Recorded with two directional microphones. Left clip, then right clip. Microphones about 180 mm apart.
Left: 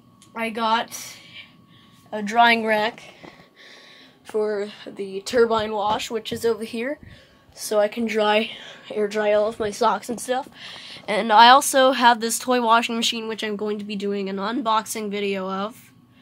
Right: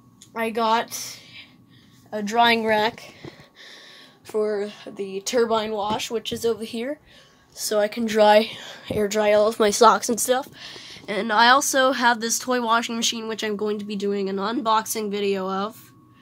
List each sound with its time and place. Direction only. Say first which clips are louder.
0.3 s a woman's voice: right 1 dB; 20° right (ahead or behind)
2.0 s speech: left 2 dB; 5° right (ahead or behind)
2.8 s a sound: right 1 dB; 30° right (ahead or behind)
4.3 s speech: even; 5° right (ahead or behind)
7.5 s a woman's voice: left 1 dB; 20° right (ahead or behind)
8.1 s speech: right 4 dB; 30° right (ahead or behind)
10.6 s a sound: left 1 dB; 5° right (ahead or behind)
11.1 s a woman's voice: left 4 dB; 15° left (ahead or behind)
13.2 s speech: right 1 dB; 10° right (ahead or behind)